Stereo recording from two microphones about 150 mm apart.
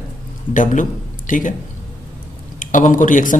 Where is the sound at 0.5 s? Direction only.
60° left (ahead or behind).